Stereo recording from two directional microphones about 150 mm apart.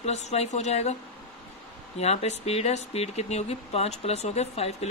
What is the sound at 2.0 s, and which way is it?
Speech, 45° left (ahead or behind).